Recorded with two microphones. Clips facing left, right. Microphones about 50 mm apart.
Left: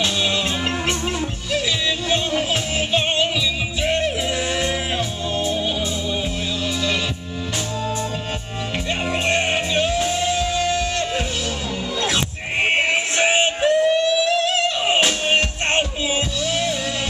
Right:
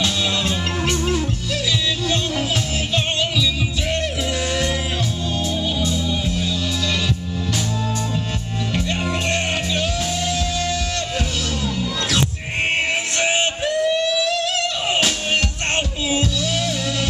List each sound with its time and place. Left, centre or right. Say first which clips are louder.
0.0 s music: even; centre
3.8 s music: left 4 dB; centre
8.7 s music: left 1 dB; centre
12.7 s music: left 2 dB; centre